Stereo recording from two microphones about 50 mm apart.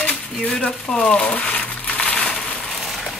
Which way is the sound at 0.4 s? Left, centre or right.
Centre.